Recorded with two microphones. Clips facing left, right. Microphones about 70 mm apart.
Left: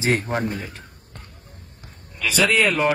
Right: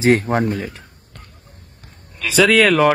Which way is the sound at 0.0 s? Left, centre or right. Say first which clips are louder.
Right 7 dB; right.